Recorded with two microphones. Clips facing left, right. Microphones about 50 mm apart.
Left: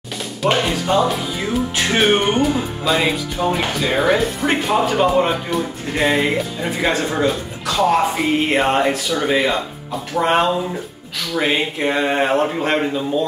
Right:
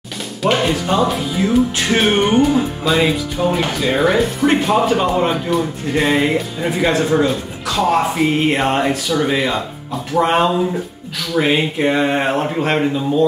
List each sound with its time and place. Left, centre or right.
0.4 s music: centre
7.1 s speech: centre
8.5 s music: centre